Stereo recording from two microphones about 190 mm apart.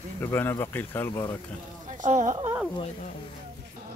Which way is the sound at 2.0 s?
40° right (ahead or behind).